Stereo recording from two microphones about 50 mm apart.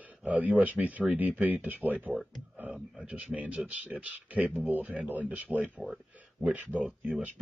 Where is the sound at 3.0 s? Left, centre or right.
Right.